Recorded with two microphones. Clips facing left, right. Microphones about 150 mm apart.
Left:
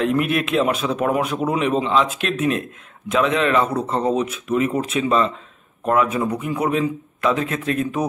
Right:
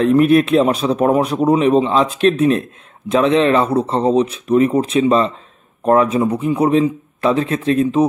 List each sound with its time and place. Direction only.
0.0 s speech: 35° right (ahead or behind)